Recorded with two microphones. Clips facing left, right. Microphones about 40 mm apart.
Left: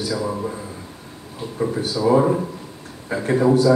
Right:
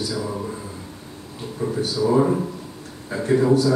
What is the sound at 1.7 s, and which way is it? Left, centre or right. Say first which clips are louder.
Speech: left 2 dB; left.